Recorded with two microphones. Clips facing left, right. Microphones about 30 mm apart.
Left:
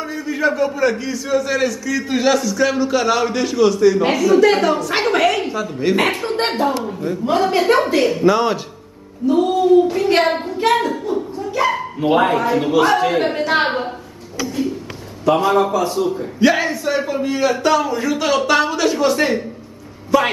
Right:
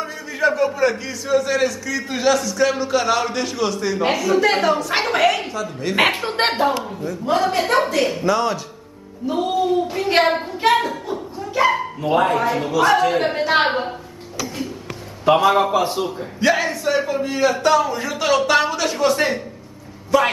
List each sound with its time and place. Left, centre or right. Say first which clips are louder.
0.0 s a man's voice: left 1 dB; centre
5.5 s speech: left 5 dB; centre
5.9 s a man's voice: even; centre
7.2 s a man's voice: left 3 dB; centre
9.3 s a sound: left 6 dB; centre
11.3 s dog: right 4 dB; centre
12.0 s speech: left 4 dB; left
12.4 s a man's voice: left 3 dB; centre
15.2 s a man's voice: even; centre
15.7 s a man's voice: even; right
16.0 s a man's voice: left 4 dB; centre
16.3 s a man's voice: left 2 dB; centre